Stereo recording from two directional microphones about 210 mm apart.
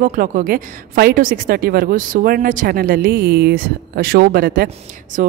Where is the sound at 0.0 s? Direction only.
40° right (ahead or behind).